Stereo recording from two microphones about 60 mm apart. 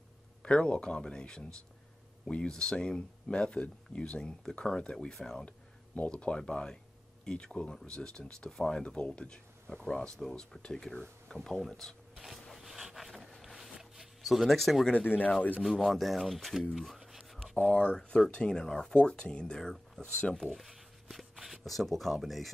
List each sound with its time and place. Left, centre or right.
0.4 s speech: centre
13.7 s zipper: centre
15.0 s speech: left
15.6 s speech: centre
16.7 s a sound: centre
17.6 s speech: left
17.9 s speech: centre
20.4 s a sound: centre